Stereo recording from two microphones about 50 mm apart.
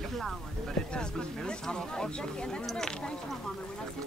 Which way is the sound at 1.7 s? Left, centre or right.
Centre.